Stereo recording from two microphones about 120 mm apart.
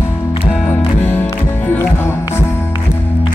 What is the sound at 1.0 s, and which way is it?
Music, 15° left (ahead or behind).